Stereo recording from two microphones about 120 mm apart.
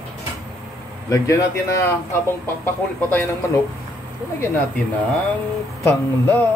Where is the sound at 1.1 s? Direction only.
25° left (ahead or behind).